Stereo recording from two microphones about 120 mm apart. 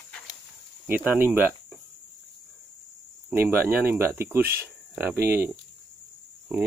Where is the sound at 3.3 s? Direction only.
20° right (ahead or behind).